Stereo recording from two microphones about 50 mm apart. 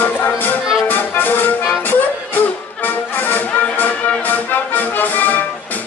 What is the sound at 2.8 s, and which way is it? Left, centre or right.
Music, left.